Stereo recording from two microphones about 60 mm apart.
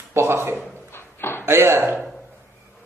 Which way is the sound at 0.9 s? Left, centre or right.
Left.